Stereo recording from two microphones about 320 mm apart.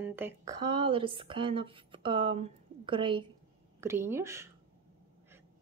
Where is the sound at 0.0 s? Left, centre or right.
Centre.